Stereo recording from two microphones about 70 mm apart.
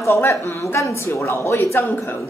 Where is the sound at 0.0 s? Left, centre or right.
Left.